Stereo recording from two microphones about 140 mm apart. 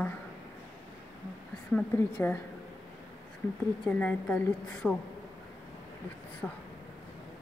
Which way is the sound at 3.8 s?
10° left (ahead or behind).